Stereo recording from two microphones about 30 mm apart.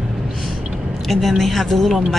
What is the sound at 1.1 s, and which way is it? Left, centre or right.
Speech, centre.